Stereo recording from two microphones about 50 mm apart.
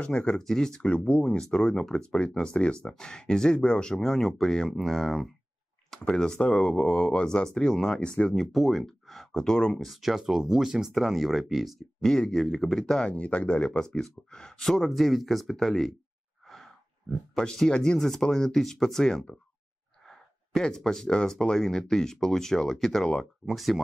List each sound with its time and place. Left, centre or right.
0.0 s speech: left
0.4 s speech: centre; by 1.4 s left
1.4 s speech: centre
8.4 s speech: centre
9.8 s speech: centre
12.0 s speech: centre
13.0 s speech: left
13.7 s speech: centre
16.4 s sigh: centre
17.4 s speech: centre